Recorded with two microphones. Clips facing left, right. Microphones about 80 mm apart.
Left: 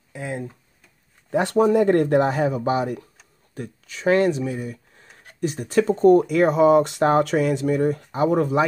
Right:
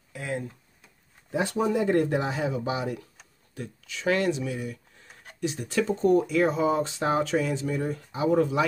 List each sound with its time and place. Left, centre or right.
0.1 s tick-tock: left
1.3 s speech: left